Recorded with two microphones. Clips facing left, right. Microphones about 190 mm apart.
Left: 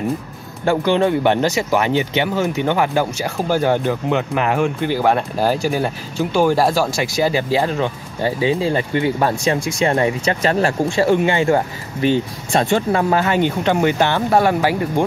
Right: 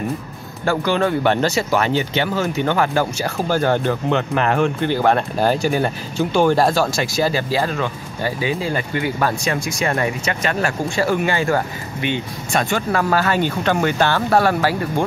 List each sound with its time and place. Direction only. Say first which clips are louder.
0.7 s speech: left 3 dB; 20° left (ahead or behind)